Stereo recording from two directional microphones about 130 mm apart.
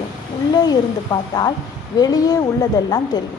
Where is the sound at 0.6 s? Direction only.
30° left (ahead or behind).